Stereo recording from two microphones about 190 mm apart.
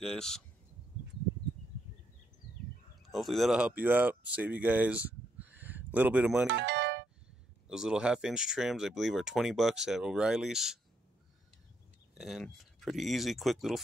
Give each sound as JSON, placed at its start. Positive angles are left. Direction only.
{"t": 0.0, "sound": "speech", "side_deg": 0}
{"t": 3.1, "sound": "speech", "side_deg": 0}
{"t": 6.4, "sound": "music", "side_deg": -70}
{"t": 7.6, "sound": "speech", "side_deg": -5}
{"t": 12.2, "sound": "speech", "side_deg": 0}